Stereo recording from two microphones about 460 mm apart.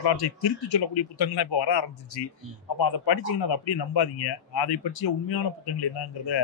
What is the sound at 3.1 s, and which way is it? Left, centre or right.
A man's voice, left.